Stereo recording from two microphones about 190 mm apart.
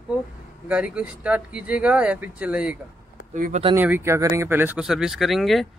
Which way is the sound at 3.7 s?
10° right (ahead or behind).